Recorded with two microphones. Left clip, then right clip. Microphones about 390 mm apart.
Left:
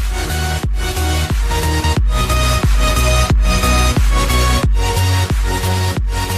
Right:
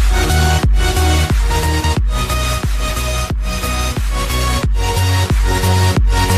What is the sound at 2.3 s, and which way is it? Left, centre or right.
Music, left.